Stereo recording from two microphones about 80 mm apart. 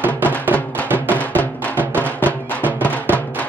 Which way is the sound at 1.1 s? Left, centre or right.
Centre.